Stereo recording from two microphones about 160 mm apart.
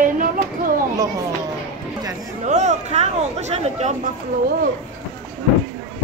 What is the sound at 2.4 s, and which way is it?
Speech, 45° right (ahead or behind).